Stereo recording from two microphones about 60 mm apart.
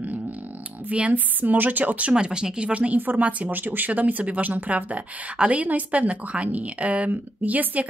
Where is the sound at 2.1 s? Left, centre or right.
Centre.